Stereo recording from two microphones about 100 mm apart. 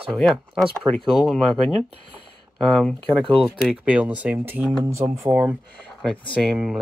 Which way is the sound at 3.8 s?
15° right (ahead or behind).